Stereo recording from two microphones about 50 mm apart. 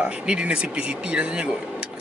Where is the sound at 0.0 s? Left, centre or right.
Right.